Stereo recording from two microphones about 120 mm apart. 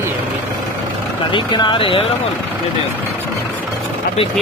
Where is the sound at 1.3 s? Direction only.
40° left (ahead or behind).